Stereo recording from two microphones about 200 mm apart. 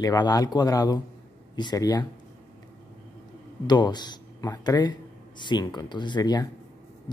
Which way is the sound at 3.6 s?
20° left (ahead or behind).